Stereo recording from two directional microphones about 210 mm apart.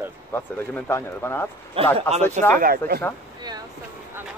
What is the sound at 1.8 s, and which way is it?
Speech, 25° right (ahead or behind).